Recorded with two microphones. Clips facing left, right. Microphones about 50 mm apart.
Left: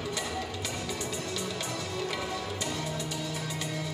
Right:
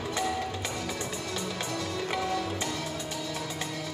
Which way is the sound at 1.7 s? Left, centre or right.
Right.